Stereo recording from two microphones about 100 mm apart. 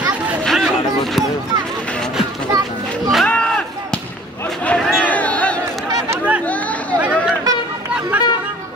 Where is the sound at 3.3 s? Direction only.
10° left (ahead or behind).